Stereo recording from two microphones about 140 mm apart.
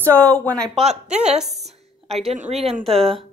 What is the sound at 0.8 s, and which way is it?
Speech, 50° right (ahead or behind).